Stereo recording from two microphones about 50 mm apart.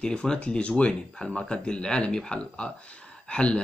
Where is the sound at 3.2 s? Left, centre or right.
Left.